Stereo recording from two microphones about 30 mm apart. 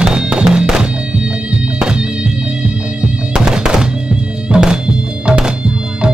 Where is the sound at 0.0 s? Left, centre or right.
Right.